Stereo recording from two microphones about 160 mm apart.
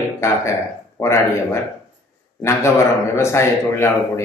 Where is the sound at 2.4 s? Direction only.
15° left (ahead or behind).